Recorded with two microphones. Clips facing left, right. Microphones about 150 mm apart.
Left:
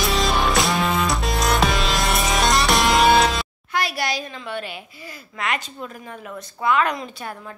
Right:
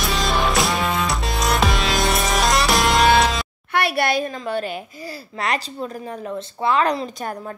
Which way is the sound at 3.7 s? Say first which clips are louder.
Right 5 dB; 60° right (ahead or behind).